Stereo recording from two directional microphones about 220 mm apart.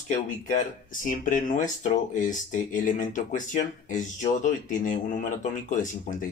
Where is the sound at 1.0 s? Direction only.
35° left (ahead or behind).